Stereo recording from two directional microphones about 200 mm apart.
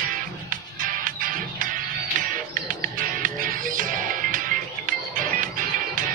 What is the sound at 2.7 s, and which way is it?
Music, 40° right (ahead or behind).